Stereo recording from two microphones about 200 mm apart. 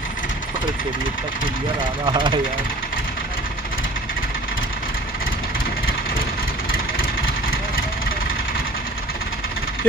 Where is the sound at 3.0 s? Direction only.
45° left (ahead or behind).